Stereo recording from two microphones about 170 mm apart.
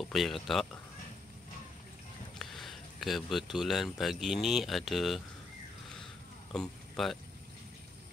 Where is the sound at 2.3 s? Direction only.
Centre (ahead or behind).